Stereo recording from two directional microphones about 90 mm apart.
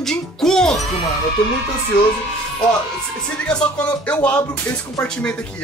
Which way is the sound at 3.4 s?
10° left (ahead or behind).